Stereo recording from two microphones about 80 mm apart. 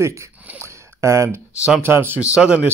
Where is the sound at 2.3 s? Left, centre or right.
Centre.